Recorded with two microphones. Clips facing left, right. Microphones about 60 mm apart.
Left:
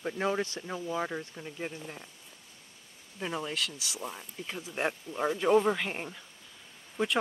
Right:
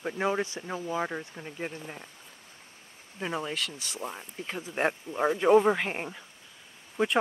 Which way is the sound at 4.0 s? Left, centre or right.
Centre.